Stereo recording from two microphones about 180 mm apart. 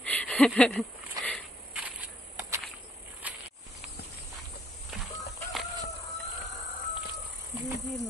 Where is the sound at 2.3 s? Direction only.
15° right (ahead or behind).